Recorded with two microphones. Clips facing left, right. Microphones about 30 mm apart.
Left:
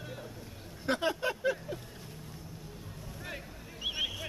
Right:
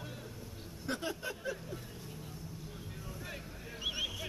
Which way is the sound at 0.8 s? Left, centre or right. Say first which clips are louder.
Left 8 dB; left.